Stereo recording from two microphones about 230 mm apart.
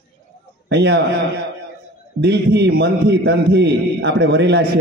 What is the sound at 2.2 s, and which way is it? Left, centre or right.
A man's voice, right.